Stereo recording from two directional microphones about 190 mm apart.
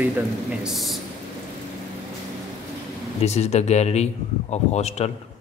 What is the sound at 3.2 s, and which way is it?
Speech, 35° left (ahead or behind).